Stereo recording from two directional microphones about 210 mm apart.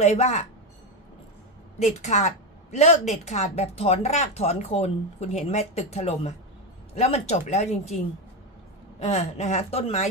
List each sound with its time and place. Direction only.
0.0 s a woman's voice: 35° left (ahead or behind)
2.0 s a woman's voice: 35° left (ahead or behind)
9.0 s a woman's voice: 30° left (ahead or behind)